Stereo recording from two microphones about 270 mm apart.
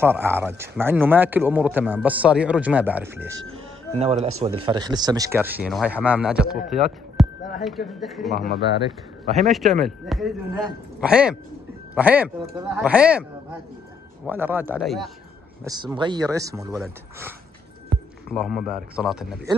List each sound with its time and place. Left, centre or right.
0.0 s speech: centre
4.0 s speech: right; by 15.0 s centre
15.6 s speech: centre
16.7 s speech: centre
18.3 s speech: centre